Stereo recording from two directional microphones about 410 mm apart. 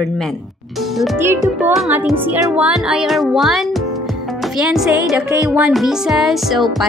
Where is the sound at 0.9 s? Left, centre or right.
Centre.